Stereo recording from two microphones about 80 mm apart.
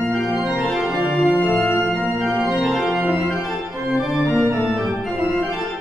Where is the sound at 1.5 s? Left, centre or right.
Left.